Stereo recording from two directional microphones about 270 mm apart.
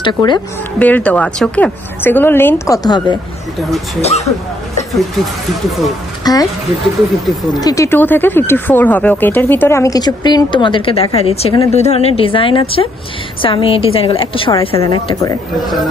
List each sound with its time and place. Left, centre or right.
0.0 s speech: centre
0.7 s a woman's voice: centre; by 4.3 s left
6.2 s speech: centre
7.6 s a woman's voice: centre
15.5 s a man's voice: centre